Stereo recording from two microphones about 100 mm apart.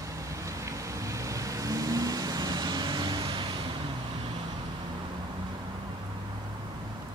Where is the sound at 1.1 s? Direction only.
35° right (ahead or behind); by 3.5 s 50° right (ahead or behind).